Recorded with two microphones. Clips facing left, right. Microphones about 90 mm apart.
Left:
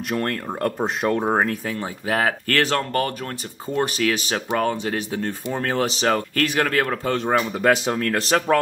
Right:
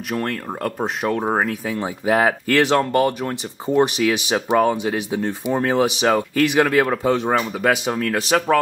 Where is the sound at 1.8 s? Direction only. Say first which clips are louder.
Right 7 dB; 20° right (ahead or behind).